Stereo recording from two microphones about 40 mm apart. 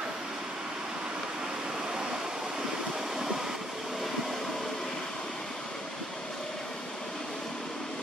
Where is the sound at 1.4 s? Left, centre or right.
Centre.